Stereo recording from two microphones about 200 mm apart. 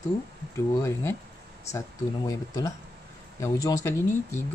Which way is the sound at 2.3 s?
15° left (ahead or behind).